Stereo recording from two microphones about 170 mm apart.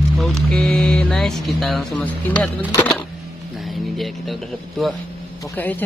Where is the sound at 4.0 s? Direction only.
Centre (ahead or behind).